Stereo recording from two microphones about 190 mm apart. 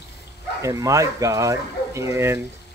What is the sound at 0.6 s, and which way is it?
Speech, 15° right (ahead or behind).